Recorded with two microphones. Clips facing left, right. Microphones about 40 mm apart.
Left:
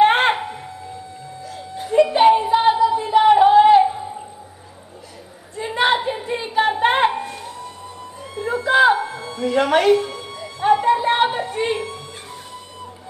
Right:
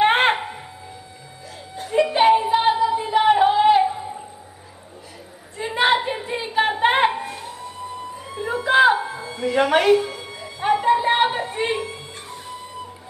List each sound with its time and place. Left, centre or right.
0.0 s music: centre
1.9 s music: centre
5.6 s a sound: centre
7.1 s music: centre
8.4 s music: centre
11.2 s a sound: centre